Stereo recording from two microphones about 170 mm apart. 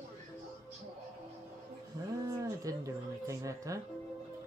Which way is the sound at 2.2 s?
20° right (ahead or behind).